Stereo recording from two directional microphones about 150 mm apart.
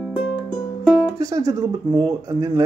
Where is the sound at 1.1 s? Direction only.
25° right (ahead or behind).